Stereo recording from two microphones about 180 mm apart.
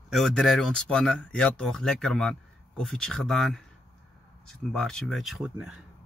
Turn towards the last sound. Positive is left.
turn(degrees=0)  # may be behind; listen again after turning